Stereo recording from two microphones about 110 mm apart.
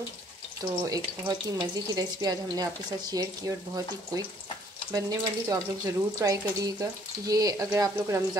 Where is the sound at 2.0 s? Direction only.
35° right (ahead or behind).